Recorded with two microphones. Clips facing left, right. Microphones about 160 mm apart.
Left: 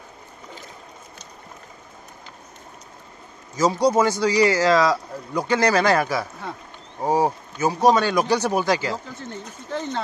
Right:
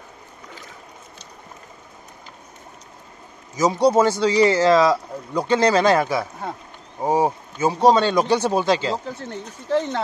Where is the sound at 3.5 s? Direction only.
25° right (ahead or behind).